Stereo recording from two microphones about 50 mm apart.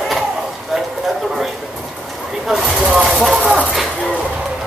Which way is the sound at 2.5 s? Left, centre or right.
Centre.